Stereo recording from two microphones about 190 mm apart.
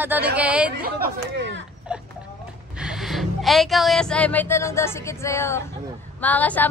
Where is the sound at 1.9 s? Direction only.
5° right (ahead or behind).